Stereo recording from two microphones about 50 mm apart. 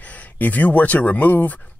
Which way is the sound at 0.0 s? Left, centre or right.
Left.